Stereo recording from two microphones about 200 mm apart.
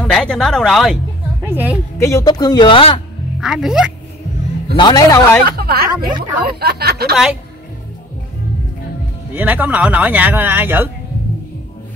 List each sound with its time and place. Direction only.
0.0 s speech: 5° left (ahead or behind)
1.4 s a woman's voice: 10° right (ahead or behind)
2.0 s speech: 15° left (ahead or behind)
3.3 s speech: centre (ahead or behind)
4.7 s speech: 20° left (ahead or behind)
5.6 s speech: 50° right (ahead or behind)
9.3 s speech: 10° right (ahead or behind)